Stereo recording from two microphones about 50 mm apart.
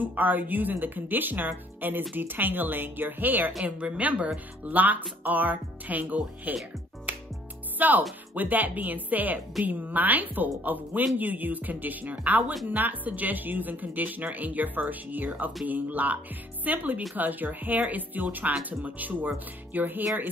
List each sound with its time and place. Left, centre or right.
0.0 s speech: right
3.6 s a woman's voice: right
7.8 s speech: right